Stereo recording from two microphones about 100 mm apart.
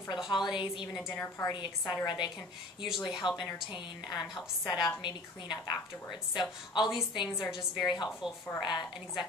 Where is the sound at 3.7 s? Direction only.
45° left (ahead or behind).